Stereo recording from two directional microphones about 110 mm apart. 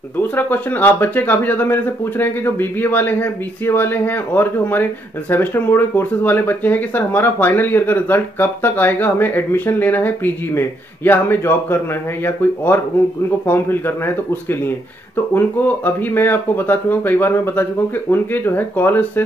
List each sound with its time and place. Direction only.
0.4 s a man's voice: 15° left (ahead or behind)